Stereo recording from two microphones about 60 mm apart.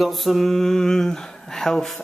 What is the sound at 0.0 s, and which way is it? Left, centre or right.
Speech, centre.